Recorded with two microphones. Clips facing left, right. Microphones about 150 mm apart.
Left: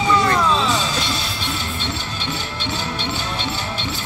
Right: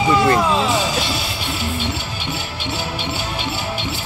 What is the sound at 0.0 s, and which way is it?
Music, 5° right (ahead or behind).